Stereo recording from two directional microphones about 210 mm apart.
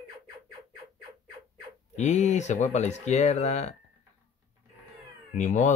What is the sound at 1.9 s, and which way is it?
Speech, 35° left (ahead or behind).